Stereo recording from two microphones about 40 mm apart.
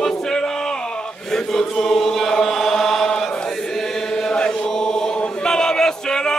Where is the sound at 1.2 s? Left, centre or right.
Centre.